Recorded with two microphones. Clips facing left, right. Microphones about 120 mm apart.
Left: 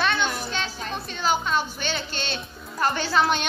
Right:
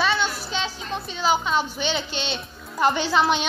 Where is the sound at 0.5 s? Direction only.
15° right (ahead or behind).